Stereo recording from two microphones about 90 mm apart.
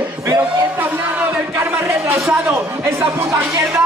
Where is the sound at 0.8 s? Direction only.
20° right (ahead or behind).